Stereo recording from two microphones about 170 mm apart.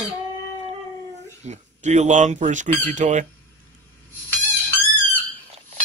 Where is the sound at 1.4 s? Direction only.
45° right (ahead or behind).